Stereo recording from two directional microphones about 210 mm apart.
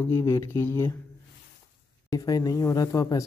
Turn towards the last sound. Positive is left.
turn(degrees=15)  # may be behind; listen again after turning